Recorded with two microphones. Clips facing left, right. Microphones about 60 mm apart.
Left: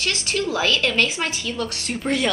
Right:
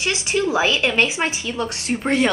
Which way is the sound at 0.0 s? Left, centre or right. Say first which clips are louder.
Right 3 dB; centre.